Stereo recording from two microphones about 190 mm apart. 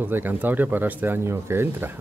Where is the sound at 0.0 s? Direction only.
10° right (ahead or behind).